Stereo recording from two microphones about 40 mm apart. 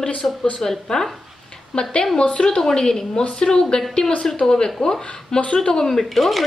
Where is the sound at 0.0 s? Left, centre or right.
Centre.